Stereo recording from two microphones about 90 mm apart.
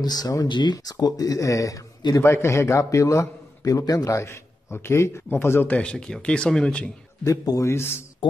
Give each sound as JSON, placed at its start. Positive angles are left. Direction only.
{"t": 0.0, "sound": "speech", "side_deg": 45}
{"t": 0.5, "sound": "speech", "side_deg": 55}
{"t": 7.2, "sound": "speech", "side_deg": 35}